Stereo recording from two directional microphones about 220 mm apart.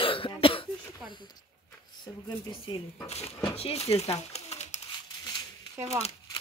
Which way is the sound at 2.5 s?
25° left (ahead or behind).